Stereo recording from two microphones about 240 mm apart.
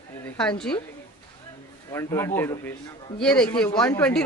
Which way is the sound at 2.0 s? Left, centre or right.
Centre.